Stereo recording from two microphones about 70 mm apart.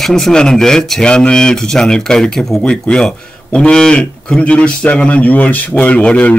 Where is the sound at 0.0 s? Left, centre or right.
Centre.